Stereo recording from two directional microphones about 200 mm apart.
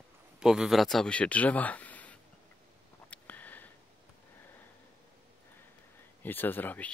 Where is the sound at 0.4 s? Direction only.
5° right (ahead or behind).